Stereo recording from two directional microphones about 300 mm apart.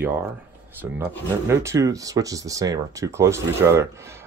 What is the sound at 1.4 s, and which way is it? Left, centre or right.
Speech, centre.